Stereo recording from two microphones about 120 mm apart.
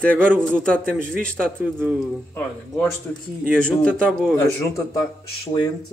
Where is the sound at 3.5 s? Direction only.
10° left (ahead or behind).